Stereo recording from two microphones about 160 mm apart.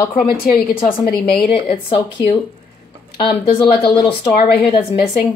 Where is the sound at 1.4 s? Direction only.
30° left (ahead or behind).